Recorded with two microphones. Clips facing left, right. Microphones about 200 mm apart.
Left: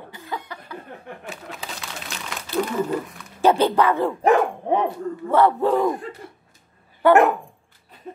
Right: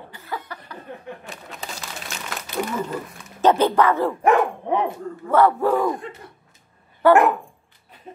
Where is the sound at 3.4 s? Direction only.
10° left (ahead or behind).